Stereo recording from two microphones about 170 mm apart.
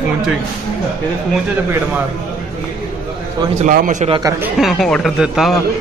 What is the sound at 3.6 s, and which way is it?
Speech, 50° right (ahead or behind).